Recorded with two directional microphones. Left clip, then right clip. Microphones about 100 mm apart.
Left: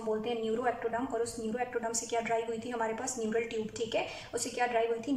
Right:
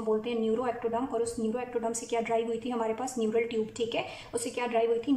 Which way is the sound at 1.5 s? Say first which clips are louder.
Right 2 dB; 25° right (ahead or behind).